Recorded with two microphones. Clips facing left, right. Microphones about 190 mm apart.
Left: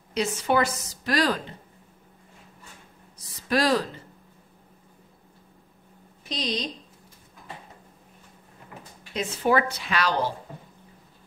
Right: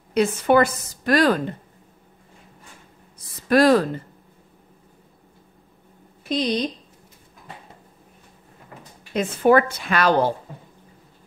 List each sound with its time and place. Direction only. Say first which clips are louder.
0.1 s a woman's voice: right 7 dB; 55° right (ahead or behind)
3.4 s a woman's voice: right 7 dB; 55° right (ahead or behind)
6.2 s speech: right 8 dB; 55° right (ahead or behind)
9.1 s a woman's voice: right 7 dB; 55° right (ahead or behind)